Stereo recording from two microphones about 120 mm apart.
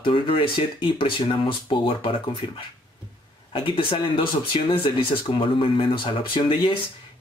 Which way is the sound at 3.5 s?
45° left (ahead or behind).